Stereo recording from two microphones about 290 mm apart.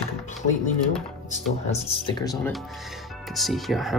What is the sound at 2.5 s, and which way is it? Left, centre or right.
Speech, centre.